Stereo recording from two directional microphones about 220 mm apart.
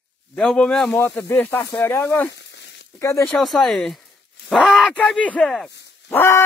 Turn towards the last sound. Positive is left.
turn(degrees=10)  # may be behind; listen again after turning